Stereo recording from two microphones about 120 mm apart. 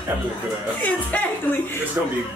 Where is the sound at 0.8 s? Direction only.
10° left (ahead or behind).